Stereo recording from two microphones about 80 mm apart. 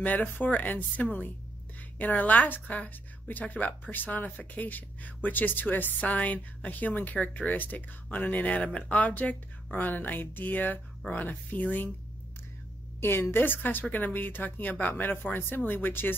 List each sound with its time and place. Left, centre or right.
0.0 s a woman's voice: left
13.0 s a woman's voice: left